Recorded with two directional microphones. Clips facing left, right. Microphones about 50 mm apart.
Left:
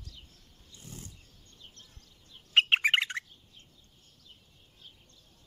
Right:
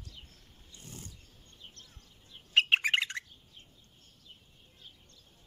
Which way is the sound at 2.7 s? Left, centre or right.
Centre.